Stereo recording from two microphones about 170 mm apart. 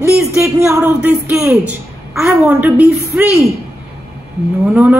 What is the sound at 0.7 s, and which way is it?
Speech, 15° right (ahead or behind).